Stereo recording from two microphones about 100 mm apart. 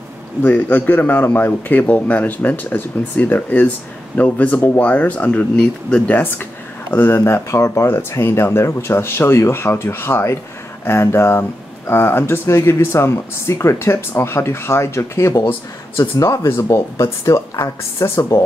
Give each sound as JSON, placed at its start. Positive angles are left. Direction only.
{"t": 0.4, "sound": "a man's voice", "side_deg": 20}